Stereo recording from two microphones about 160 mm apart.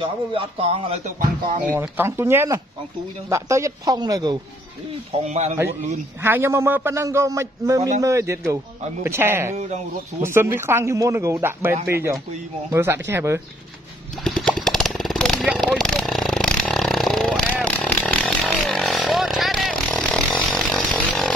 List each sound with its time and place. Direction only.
0.0 s speech: 35° right (ahead or behind)
1.8 s a man's voice: 15° right (ahead or behind)
5.1 s a man's voice: 45° right (ahead or behind)
6.2 s a man's voice: 15° right (ahead or behind)
12.7 s a man's voice: 15° right (ahead or behind)
14.1 s a sound: 5° left (ahead or behind)